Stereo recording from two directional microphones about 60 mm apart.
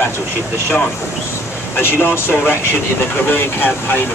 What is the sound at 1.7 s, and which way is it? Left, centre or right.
Speech, left.